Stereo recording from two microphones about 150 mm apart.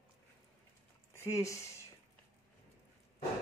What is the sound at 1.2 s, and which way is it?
Speech, 20° left (ahead or behind).